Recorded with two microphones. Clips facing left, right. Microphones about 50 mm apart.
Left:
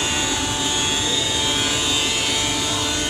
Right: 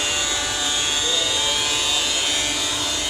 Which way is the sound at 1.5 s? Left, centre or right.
Centre.